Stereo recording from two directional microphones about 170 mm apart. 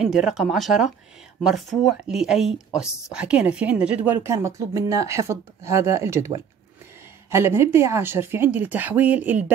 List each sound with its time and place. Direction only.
0.0 s a woman's voice: 5° right (ahead or behind)